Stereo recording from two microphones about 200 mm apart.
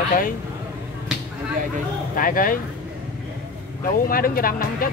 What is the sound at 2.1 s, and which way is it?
Speech, 45° left (ahead or behind).